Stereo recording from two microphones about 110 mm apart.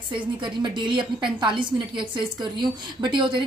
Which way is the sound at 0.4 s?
45° right (ahead or behind).